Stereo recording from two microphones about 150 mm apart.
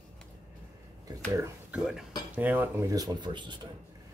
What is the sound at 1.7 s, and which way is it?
Speech, 5° right (ahead or behind).